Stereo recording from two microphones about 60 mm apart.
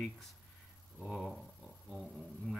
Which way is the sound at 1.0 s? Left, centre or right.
Centre.